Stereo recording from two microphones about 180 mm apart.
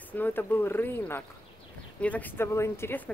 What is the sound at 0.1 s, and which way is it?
Speech, 10° left (ahead or behind).